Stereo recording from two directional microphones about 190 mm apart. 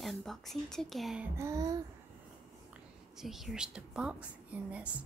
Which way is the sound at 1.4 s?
20° right (ahead or behind).